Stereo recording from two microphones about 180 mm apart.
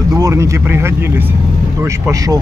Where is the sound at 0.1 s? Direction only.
15° right (ahead or behind).